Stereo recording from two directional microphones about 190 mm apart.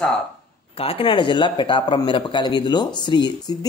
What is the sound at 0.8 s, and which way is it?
Speech, 30° left (ahead or behind).